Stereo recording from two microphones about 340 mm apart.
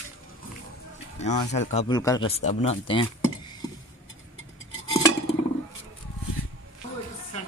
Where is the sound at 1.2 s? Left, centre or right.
Centre.